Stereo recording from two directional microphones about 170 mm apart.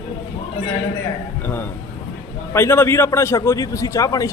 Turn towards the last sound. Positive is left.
turn(degrees=20)  # may be behind; listen again after turning